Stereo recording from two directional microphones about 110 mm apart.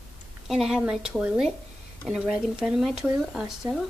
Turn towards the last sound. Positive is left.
turn(degrees=-5)  # may be behind; listen again after turning